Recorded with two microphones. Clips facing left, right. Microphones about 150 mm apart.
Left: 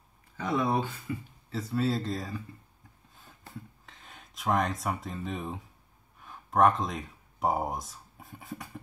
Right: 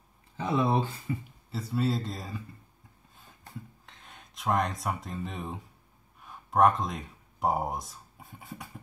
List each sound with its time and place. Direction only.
0.4 s speech: 25° right (ahead or behind)
1.5 s speech: 5° right (ahead or behind)
3.8 s speech: centre (ahead or behind)